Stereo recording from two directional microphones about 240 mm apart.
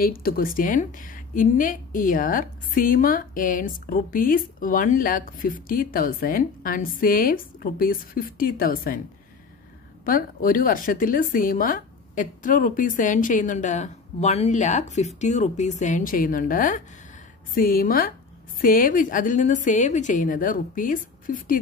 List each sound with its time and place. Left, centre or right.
0.0 s a woman's voice: left
10.0 s a woman's voice: left